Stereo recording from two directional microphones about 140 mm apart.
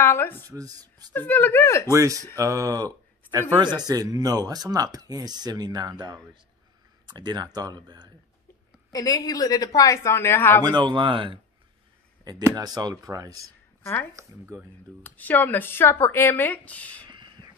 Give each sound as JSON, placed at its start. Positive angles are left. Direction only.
{"t": 0.0, "sound": "speech", "side_deg": 15}
{"t": 0.5, "sound": "speech", "side_deg": -25}
{"t": 1.1, "sound": "speech", "side_deg": 15}
{"t": 1.9, "sound": "speech", "side_deg": -25}
{"t": 8.9, "sound": "a woman's voice", "side_deg": 25}
{"t": 10.6, "sound": "speech", "side_deg": -30}
{"t": 12.5, "sound": "speech", "side_deg": -30}
{"t": 15.0, "sound": "speech", "side_deg": 10}